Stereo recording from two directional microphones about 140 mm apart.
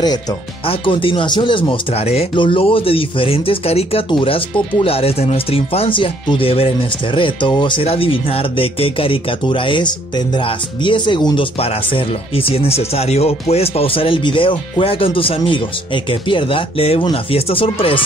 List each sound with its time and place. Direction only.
0.7 s speech: 40° left (ahead or behind)